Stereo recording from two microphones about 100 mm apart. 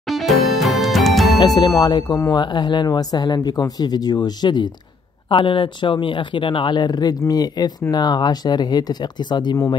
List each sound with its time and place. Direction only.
0.1 s music: centre (ahead or behind)
1.4 s speech: 45° left (ahead or behind)
5.3 s speech: 60° left (ahead or behind)